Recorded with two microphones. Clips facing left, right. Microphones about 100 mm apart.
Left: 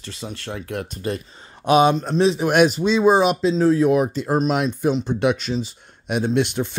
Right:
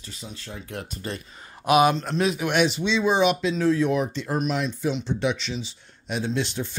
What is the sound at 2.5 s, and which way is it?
Speech, 45° left (ahead or behind).